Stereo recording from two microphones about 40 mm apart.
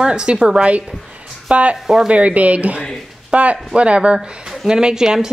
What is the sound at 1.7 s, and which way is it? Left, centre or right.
Speech, centre.